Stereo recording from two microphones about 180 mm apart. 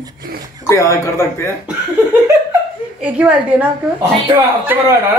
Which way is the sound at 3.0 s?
5° right (ahead or behind).